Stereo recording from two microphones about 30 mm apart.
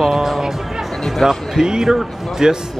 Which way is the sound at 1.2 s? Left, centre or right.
Centre.